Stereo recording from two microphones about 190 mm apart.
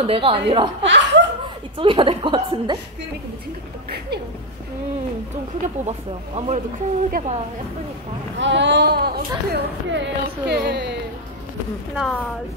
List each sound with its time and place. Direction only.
0.0 s a woman's voice: 30° right (ahead or behind)
0.8 s chuckle: 70° right (ahead or behind)
1.8 s a woman's voice: 25° right (ahead or behind)
5.9 s speech: 30° right (ahead or behind)
8.4 s speech: 70° right (ahead or behind)
11.9 s speech: centre (ahead or behind)